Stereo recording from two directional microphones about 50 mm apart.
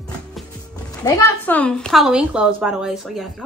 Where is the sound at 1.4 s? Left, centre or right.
Left.